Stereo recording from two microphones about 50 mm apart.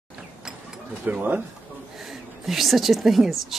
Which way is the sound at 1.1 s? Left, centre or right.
Right.